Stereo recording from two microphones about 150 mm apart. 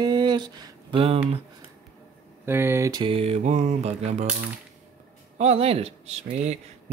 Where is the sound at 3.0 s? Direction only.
40° right (ahead or behind).